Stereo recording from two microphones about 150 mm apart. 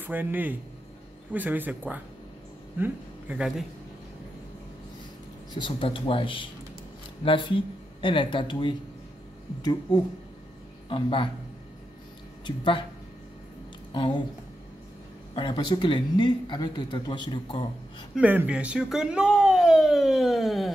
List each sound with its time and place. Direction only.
0.0 s speech: 10° right (ahead or behind)
5.5 s speech: 35° left (ahead or behind)
9.9 s speech: 30° left (ahead or behind)
12.4 s speech: 35° left (ahead or behind)
13.9 s speech: 30° left (ahead or behind)
15.3 s speech: 30° left (ahead or behind)
18.1 s a sound: 10° right (ahead or behind)